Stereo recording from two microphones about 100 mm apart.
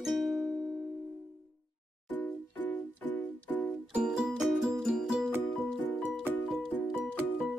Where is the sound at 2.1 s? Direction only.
15° left (ahead or behind).